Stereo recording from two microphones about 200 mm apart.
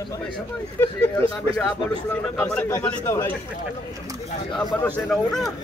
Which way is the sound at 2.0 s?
5° left (ahead or behind).